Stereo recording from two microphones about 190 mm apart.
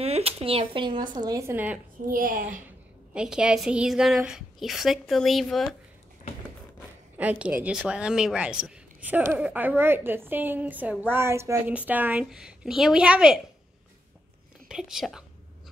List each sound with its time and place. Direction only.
0.0 s a woman's voice: 30° right (ahead or behind); by 1.8 s 10° right (ahead or behind)
2.0 s a child's voice: 45° right (ahead or behind)
3.1 s a woman's voice: 5° right (ahead or behind)
7.2 s a woman's voice: 5° right (ahead or behind)
14.7 s a woman's voice: centre (ahead or behind)